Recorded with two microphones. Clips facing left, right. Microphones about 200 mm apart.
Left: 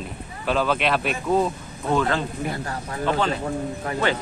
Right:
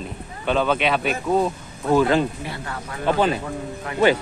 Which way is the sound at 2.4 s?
40° left (ahead or behind).